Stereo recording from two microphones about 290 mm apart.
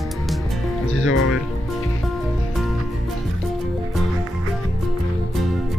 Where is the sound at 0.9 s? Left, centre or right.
Left.